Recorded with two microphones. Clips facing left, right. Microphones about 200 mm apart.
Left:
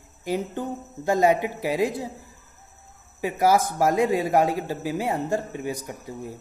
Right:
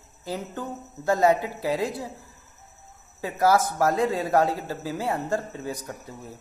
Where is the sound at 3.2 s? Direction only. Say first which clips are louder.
Left 1 dB; 15° left (ahead or behind).